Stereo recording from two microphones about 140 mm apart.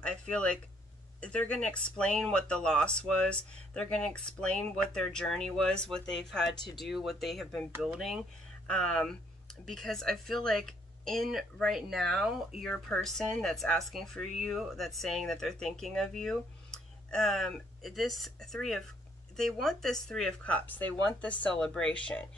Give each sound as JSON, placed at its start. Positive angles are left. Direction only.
{"t": 0.0, "sound": "speech", "side_deg": 10}
{"t": 6.5, "sound": "speech", "side_deg": 30}
{"t": 6.8, "sound": "speech", "side_deg": 0}